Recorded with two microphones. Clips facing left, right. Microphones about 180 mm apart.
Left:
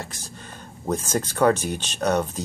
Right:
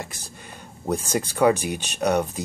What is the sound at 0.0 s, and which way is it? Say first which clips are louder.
Speech: even; 10° right (ahead or behind).